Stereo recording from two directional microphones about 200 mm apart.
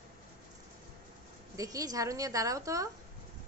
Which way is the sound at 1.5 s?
15° right (ahead or behind).